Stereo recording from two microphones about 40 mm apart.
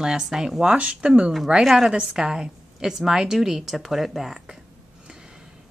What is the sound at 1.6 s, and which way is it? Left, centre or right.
Speech, centre.